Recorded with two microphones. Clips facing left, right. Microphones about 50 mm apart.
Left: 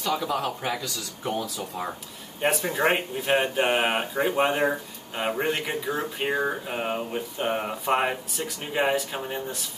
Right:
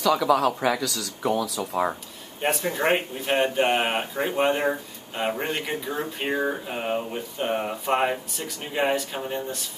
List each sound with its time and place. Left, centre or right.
0.0 s speech: right
2.4 s speech: centre